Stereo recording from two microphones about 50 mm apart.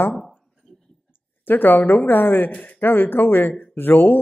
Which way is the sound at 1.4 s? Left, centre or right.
Left.